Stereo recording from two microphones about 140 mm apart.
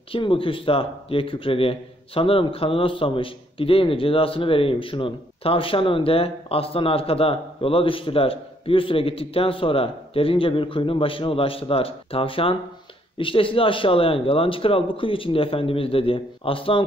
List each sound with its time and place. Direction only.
0.1 s a man's voice: 40° left (ahead or behind)